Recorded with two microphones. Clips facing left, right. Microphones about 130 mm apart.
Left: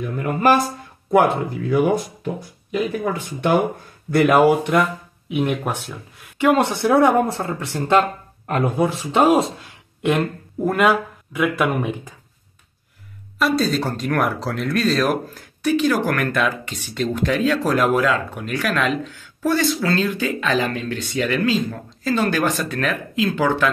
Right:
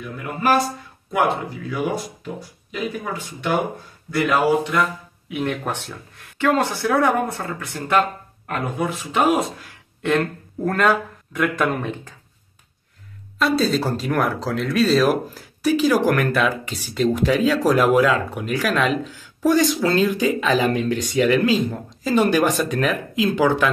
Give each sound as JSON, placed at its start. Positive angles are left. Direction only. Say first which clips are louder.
{"t": 1.1, "sound": "speech", "louder": "left 5 dB", "side_deg": 50}
{"t": 5.3, "sound": "speech", "louder": "left 3 dB", "side_deg": 15}
{"t": 10.0, "sound": "speech", "louder": "left 1 dB", "side_deg": 15}
{"t": 13.4, "sound": "speech", "louder": "even", "side_deg": 0}